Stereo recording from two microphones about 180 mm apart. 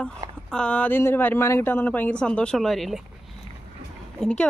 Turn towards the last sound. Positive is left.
turn(degrees=5)  # may be behind; listen again after turning